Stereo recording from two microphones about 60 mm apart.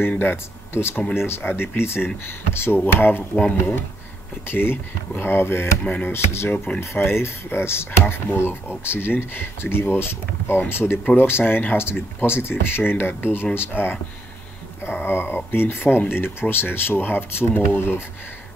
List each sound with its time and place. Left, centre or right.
0.2 s speech: left
4.5 s speech: left